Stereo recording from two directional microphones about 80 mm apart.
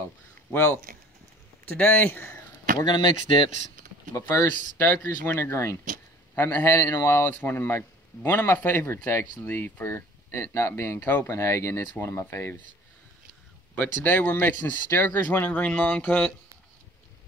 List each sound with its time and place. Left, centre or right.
0.5 s speech: left
2.8 s speech: left
4.1 s speech: left
4.7 s speech: left
11.2 s speech: left
13.7 s speech: left